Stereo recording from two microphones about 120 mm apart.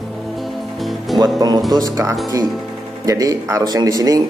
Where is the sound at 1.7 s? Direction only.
30° right (ahead or behind).